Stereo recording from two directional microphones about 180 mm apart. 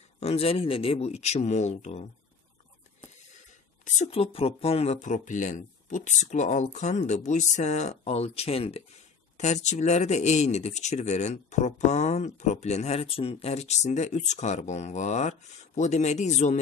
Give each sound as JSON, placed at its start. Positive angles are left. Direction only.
{"t": 0.2, "sound": "speech", "side_deg": 35}
{"t": 3.8, "sound": "speech", "side_deg": 40}